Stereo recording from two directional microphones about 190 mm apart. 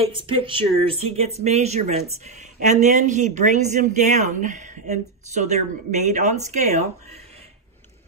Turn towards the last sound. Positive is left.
turn(degrees=-35)  # may be behind; listen again after turning